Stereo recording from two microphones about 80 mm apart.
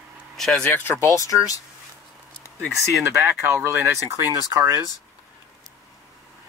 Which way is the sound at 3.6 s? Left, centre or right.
Right.